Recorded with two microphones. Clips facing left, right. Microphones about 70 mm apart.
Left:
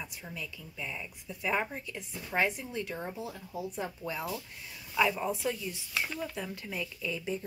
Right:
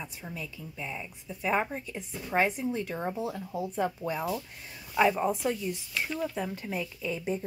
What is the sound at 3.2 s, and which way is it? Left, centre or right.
Speech, right.